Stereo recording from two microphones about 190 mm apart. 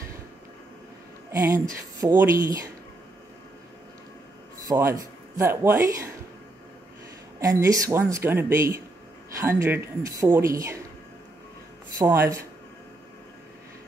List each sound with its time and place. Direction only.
1.3 s a man's voice: 20° right (ahead or behind)
4.6 s speech: 15° right (ahead or behind)
7.3 s a man's voice: 15° right (ahead or behind)
12.0 s a man's voice: 15° right (ahead or behind)